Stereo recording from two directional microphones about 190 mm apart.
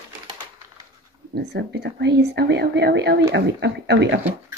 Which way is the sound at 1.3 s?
60° right (ahead or behind).